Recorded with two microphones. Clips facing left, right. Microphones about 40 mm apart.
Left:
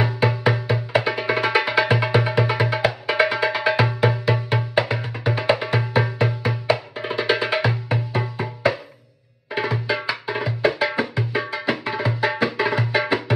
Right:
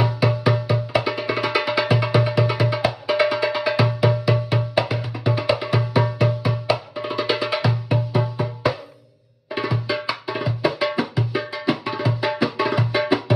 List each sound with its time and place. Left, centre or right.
0.0 s music: left
6.7 s tabla: centre
7.2 s music: left
11.9 s tabla: left
12.3 s music: left